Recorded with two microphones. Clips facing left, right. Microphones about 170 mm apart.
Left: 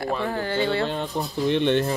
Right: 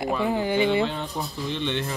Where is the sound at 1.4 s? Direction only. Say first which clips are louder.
Left 9 dB; 55° left (ahead or behind).